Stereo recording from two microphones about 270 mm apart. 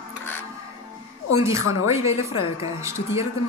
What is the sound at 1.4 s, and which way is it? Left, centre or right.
Speech, centre.